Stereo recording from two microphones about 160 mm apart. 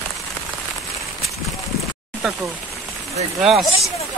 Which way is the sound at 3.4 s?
Centre (ahead or behind).